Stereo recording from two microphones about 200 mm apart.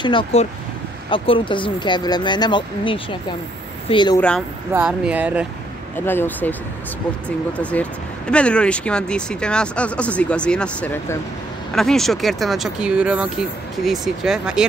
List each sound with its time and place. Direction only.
0.0 s speech: 25° left (ahead or behind)
4.7 s speech: 5° right (ahead or behind)
5.9 s speech: 10° left (ahead or behind)